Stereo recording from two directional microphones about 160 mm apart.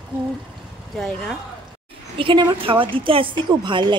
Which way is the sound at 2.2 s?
35° right (ahead or behind).